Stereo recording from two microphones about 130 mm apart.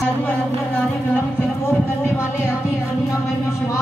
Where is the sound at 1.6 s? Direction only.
20° left (ahead or behind).